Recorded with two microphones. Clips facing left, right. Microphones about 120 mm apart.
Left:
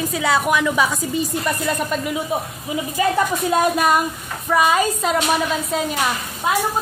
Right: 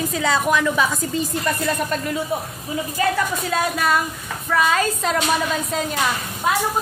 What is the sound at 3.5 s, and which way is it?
A woman's voice, 15° left (ahead or behind).